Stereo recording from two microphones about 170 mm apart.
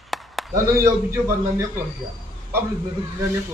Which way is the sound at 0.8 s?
15° right (ahead or behind).